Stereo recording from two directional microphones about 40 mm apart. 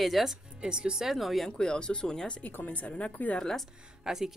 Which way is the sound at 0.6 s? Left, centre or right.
Right.